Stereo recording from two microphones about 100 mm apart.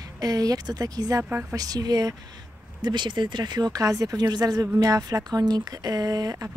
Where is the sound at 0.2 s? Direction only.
40° right (ahead or behind).